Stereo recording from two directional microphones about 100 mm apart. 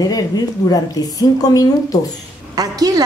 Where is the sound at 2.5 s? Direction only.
40° right (ahead or behind).